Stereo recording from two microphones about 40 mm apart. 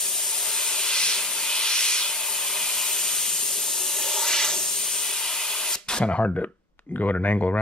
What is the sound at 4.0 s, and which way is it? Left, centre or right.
Hiss, centre.